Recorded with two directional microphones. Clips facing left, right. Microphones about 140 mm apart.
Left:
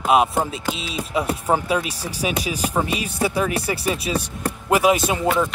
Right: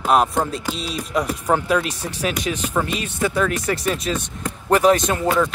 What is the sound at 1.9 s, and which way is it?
Speech, 35° left (ahead or behind).